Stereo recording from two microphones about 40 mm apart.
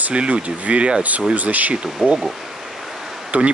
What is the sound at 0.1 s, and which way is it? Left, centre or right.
Speech, right.